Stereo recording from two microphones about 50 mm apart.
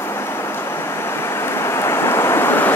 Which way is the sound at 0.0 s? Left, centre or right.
Left.